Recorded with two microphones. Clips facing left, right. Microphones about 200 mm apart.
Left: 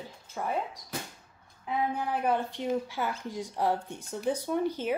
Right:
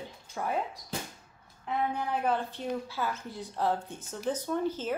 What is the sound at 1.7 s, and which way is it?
Speech, centre (ahead or behind).